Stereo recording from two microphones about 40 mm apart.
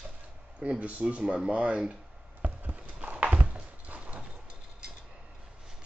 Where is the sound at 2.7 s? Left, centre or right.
Right.